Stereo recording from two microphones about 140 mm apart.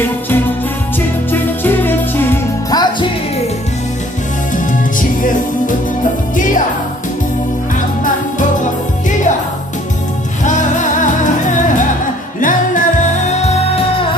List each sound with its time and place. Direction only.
1.3 s music: 15° left (ahead or behind)
2.7 s music: 30° left (ahead or behind)
4.9 s music: 70° left (ahead or behind)
8.0 s music: 65° left (ahead or behind)
10.4 s music: 60° left (ahead or behind)